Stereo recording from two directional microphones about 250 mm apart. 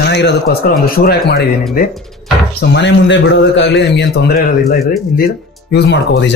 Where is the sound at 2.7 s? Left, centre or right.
Left.